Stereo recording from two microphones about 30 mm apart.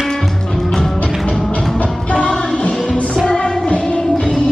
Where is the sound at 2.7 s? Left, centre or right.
Left.